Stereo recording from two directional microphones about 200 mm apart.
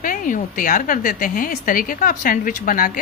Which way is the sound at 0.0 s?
40° left (ahead or behind).